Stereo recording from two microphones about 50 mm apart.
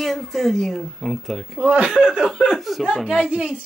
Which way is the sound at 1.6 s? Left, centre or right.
Right.